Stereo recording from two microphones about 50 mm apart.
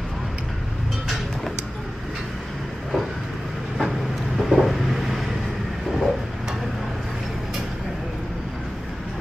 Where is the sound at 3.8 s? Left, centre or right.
Centre.